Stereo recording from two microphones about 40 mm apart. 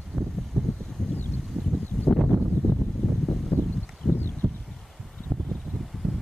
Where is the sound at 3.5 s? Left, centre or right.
Left.